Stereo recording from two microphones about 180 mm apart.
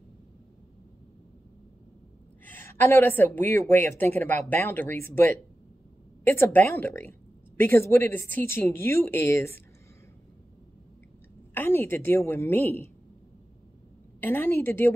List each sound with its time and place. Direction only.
2.4 s speech: 10° left (ahead or behind)
11.5 s speech: 15° left (ahead or behind)
14.2 s speech: 10° left (ahead or behind)